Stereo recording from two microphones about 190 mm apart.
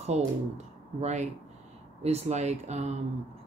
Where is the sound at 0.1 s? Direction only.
35° right (ahead or behind).